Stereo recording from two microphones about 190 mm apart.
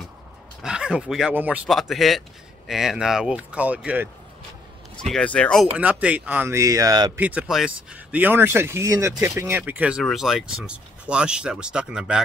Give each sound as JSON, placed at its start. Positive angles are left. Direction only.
{"t": 0.6, "sound": "speech", "side_deg": -5}
{"t": 5.0, "sound": "speech", "side_deg": 5}
{"t": 5.7, "sound": "speech", "side_deg": -5}
{"t": 7.2, "sound": "speech", "side_deg": -5}